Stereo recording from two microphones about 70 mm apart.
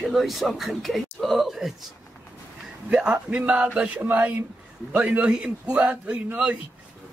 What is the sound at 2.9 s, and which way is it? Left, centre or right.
A man's voice, centre.